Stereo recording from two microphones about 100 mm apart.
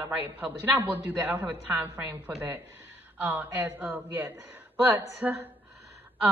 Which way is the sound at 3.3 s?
20° right (ahead or behind).